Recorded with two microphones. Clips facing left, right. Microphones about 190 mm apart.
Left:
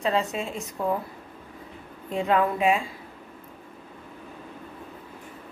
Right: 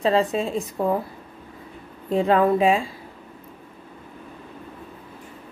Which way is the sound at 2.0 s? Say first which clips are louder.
Right 5 dB; 35° right (ahead or behind).